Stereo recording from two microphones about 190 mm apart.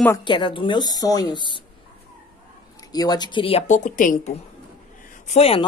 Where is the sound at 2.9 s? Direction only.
20° left (ahead or behind).